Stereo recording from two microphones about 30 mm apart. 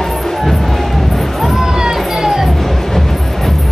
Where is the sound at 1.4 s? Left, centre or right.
Centre.